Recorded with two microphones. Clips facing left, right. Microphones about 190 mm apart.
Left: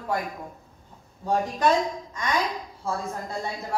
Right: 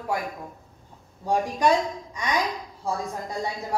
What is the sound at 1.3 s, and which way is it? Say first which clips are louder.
A woman's voice: right 1 dB; 15° right (ahead or behind).